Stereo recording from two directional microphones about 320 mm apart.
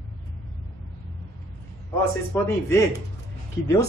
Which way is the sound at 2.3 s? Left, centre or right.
Centre.